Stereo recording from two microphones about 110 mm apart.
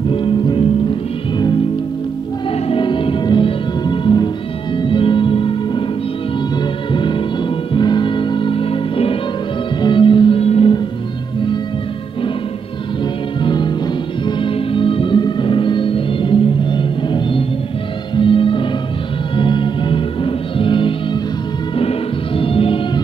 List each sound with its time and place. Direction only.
0.1 s music: 50° left (ahead or behind)
2.5 s music: 50° left (ahead or behind)
9.8 s music: 50° left (ahead or behind); by 10.7 s 65° left (ahead or behind)
13.4 s music: 45° left (ahead or behind)